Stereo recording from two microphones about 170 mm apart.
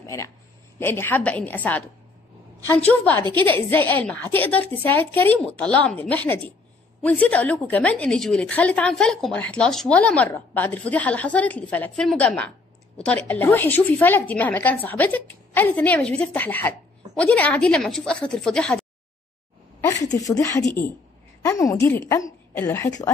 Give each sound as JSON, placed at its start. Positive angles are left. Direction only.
{"t": 0.0, "sound": "a woman's voice", "side_deg": 15}